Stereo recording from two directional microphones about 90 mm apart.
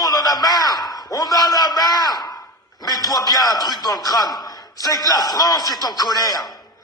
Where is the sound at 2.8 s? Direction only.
45° left (ahead or behind).